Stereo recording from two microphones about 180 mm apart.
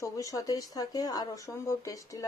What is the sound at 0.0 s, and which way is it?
Speech, 20° left (ahead or behind).